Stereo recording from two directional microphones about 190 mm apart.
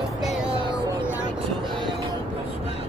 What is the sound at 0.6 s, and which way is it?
Speech, 25° right (ahead or behind).